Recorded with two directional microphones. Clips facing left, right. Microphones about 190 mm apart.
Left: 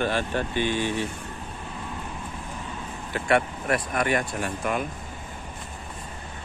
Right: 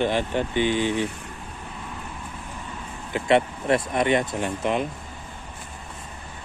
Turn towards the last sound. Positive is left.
turn(degrees=-25)  # may be behind; listen again after turning